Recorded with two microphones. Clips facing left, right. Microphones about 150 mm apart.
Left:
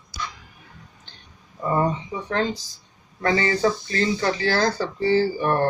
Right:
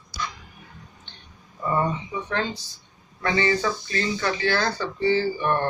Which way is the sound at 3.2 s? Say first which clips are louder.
Left 2 dB; 40° left (ahead or behind).